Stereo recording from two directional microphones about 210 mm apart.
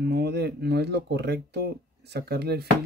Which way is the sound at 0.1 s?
50° right (ahead or behind).